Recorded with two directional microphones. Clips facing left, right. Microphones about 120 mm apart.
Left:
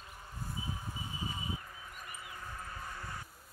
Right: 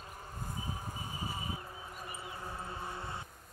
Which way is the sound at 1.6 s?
30° right (ahead or behind).